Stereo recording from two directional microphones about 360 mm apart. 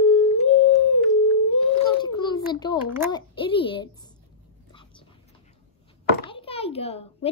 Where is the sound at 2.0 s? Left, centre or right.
Centre.